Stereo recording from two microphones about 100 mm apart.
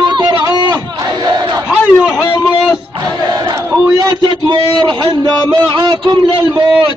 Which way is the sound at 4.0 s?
40° right (ahead or behind).